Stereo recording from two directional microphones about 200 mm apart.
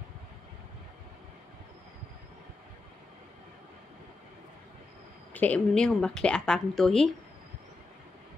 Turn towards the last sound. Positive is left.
turn(degrees=0)  # may be behind; listen again after turning